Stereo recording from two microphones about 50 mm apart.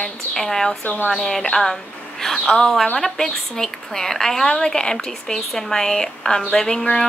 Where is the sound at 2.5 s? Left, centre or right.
Centre.